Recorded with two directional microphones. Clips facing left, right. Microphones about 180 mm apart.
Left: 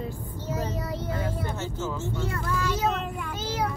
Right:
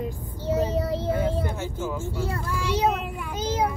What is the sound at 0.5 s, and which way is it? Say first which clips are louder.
Child singing: right 7 dB; 30° right (ahead or behind).